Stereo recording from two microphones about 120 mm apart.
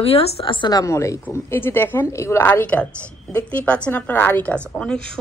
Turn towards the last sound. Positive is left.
turn(degrees=5)  # may be behind; listen again after turning